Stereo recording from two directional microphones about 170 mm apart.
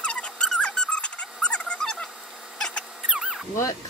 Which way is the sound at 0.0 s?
5° left (ahead or behind).